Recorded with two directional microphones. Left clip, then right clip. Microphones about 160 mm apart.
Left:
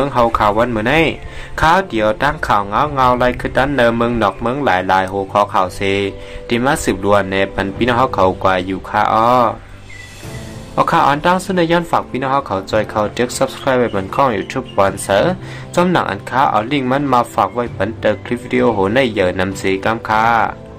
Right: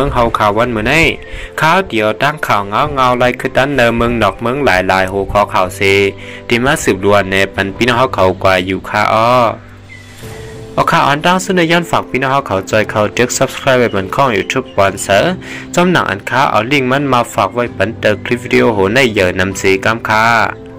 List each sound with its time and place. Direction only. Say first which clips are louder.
0.0 s speech: right 2 dB; 10° right (ahead or behind)
10.8 s speech: right 2 dB; 15° right (ahead or behind)